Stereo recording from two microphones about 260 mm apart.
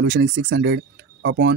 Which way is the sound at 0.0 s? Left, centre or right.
Right.